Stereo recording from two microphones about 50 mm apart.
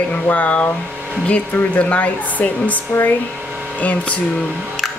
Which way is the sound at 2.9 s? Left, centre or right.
Left.